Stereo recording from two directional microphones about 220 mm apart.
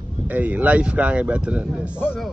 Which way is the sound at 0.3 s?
5° right (ahead or behind).